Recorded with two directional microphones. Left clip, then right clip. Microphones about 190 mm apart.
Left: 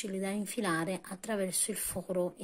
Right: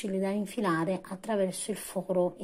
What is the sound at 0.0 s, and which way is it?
A woman's voice, 10° left (ahead or behind).